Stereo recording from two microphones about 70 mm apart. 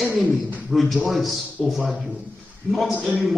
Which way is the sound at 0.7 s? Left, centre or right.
Centre.